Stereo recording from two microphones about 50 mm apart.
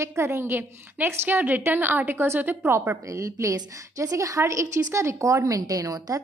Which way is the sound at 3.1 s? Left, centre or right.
Right.